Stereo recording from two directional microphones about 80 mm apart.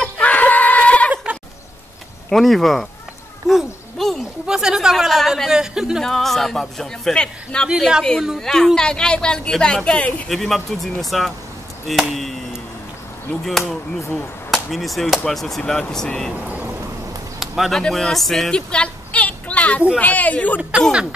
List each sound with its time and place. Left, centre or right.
0.0 s a sound: centre
1.1 s sheep: centre
2.2 s speech: centre
6.0 s speech: centre
7.6 s speech: centre
8.4 s a woman's voice: centre
10.2 s speech: centre
14.1 s a sound: centre
15.2 s speech: centre
16.4 s a sound: centre
17.4 s speech: centre